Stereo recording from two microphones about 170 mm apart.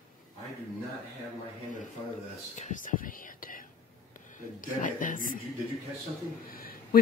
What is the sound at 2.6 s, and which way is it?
Speech, 50° left (ahead or behind).